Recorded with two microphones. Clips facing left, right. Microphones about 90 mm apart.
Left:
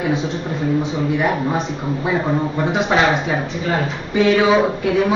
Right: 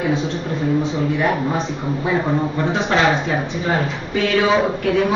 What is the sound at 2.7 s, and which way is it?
A woman's voice, 10° left (ahead or behind).